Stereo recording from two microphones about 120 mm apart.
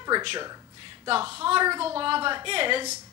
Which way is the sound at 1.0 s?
50° right (ahead or behind).